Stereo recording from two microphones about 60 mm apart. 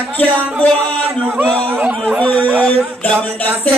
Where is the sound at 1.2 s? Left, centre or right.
Right.